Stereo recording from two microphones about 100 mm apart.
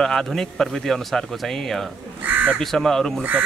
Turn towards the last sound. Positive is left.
turn(degrees=5)  # may be behind; listen again after turning